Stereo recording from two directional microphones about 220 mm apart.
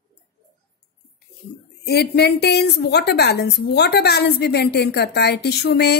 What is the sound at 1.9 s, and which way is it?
A woman's voice, 50° left (ahead or behind).